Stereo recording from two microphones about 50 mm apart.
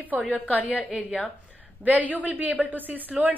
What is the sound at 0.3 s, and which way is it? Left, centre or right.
Speech, left.